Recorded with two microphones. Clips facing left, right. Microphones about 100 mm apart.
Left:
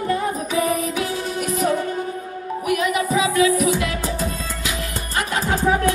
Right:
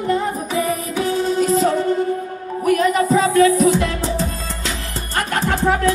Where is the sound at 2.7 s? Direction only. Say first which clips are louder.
Right 5 dB; 35° right (ahead or behind).